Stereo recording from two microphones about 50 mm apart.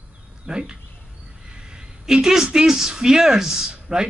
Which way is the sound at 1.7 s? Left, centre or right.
Centre.